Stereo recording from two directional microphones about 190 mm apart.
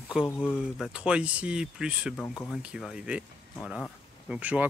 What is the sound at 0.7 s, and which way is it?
Speech, 5° right (ahead or behind).